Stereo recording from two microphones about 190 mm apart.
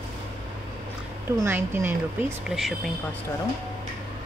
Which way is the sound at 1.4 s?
10° right (ahead or behind).